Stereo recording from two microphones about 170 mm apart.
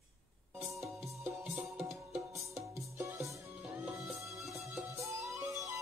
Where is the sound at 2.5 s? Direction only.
15° right (ahead or behind).